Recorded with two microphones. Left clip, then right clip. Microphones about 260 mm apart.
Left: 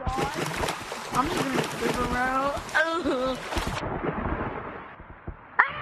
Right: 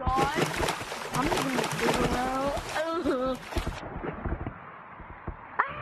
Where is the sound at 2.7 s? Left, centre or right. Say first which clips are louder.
Left 7 dB; left.